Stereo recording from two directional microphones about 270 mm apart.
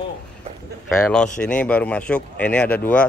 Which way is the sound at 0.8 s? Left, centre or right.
Centre.